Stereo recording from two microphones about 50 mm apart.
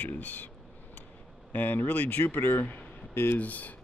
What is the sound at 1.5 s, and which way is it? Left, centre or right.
Speech, left.